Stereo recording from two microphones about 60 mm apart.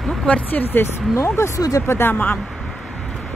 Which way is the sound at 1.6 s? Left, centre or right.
Left.